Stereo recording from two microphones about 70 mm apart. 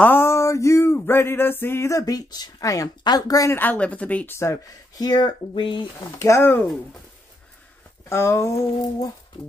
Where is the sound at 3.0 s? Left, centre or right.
Left.